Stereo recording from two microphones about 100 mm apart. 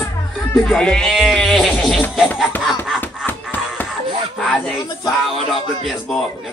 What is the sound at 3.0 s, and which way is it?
Music, 15° left (ahead or behind).